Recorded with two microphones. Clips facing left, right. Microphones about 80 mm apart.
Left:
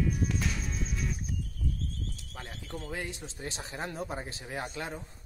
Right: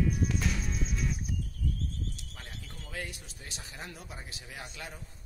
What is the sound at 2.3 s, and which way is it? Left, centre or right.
Speech, left.